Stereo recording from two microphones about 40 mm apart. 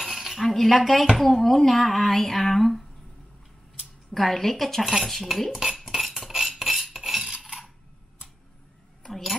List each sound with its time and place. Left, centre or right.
0.0 s a sound: centre
0.4 s speech: centre
4.1 s speech: centre
5.5 s cutlery: centre
7.2 s a sound: centre
9.0 s cat: centre